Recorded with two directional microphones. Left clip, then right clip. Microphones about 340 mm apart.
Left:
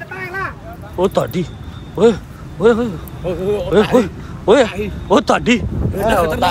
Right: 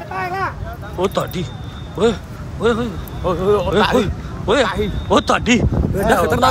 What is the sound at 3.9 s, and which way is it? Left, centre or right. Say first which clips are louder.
Speech: left 3 dB; centre.